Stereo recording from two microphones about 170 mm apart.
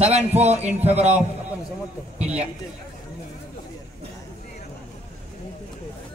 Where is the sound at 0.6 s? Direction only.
10° right (ahead or behind).